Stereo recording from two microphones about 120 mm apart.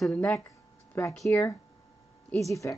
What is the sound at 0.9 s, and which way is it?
Speech, 15° left (ahead or behind).